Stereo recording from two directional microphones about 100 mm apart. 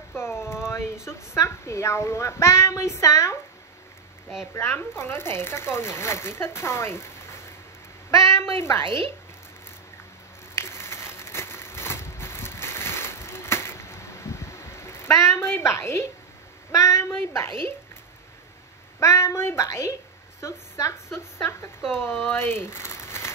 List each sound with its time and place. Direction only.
0.1 s a sound: 25° left (ahead or behind)
1.0 s speech: 30° left (ahead or behind)
4.6 s speech: 25° left (ahead or behind)
8.1 s speech: 30° left (ahead or behind)
8.8 s speech: 55° right (ahead or behind)
10.5 s a sound: 25° left (ahead or behind)
18.9 s a woman's voice: 30° left (ahead or behind)